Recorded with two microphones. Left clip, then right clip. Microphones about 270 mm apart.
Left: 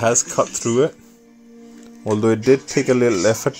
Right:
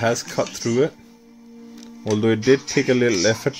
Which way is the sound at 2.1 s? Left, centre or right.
Centre.